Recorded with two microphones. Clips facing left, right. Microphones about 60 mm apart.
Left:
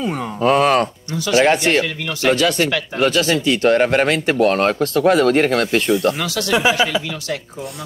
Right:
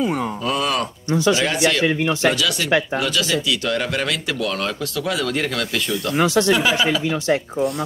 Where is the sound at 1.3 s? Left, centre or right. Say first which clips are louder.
Left 6 dB; left.